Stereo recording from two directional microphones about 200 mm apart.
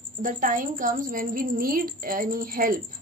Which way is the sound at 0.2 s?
40° right (ahead or behind).